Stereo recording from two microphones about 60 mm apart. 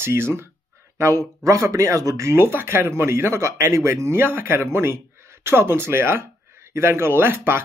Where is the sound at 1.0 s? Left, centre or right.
Right.